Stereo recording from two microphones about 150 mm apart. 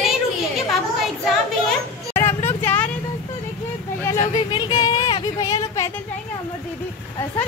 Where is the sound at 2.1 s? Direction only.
15° left (ahead or behind).